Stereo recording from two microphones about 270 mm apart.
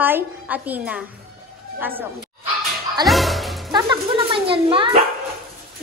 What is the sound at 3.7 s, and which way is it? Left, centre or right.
Speech, centre.